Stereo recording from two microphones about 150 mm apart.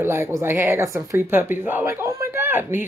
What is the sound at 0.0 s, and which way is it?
Speech, 15° right (ahead or behind).